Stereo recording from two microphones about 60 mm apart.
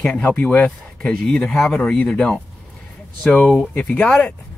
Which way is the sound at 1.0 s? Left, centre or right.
Centre.